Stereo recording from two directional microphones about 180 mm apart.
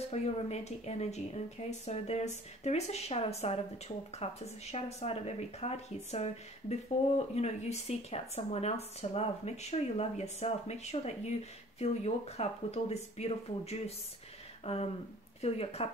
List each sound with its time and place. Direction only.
0.1 s speech: 35° left (ahead or behind)